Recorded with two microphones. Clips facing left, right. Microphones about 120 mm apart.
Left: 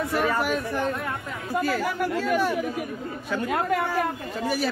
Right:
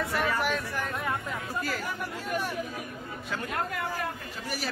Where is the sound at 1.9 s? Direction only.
90° left.